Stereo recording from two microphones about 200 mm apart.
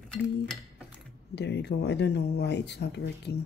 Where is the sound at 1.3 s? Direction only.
60° left (ahead or behind).